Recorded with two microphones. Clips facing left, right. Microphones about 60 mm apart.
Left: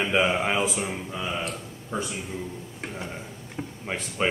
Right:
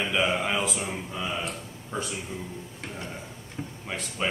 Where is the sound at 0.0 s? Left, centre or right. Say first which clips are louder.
Left 3 dB; left.